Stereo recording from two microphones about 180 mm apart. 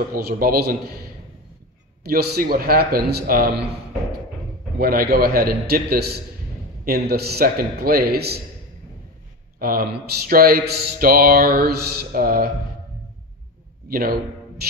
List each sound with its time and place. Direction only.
0.1 s speech: 55° right (ahead or behind)
2.0 s speech: 60° right (ahead or behind)
4.7 s speech: 55° right (ahead or behind)
9.6 s speech: 55° right (ahead or behind)
13.8 s speech: 55° right (ahead or behind)